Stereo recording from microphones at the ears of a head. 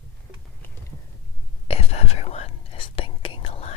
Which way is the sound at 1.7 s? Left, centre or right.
Left.